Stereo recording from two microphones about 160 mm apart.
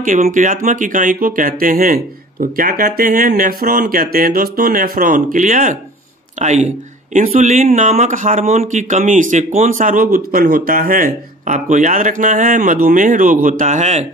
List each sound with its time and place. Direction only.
0.0 s speech: 55° right (ahead or behind)